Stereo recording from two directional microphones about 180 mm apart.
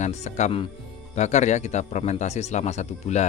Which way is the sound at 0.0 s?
40° left (ahead or behind).